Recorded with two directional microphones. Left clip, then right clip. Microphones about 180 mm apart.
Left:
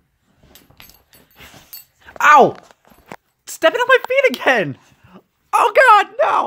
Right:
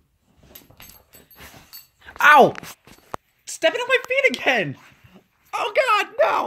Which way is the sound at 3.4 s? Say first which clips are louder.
Left 7 dB; 45° left (ahead or behind).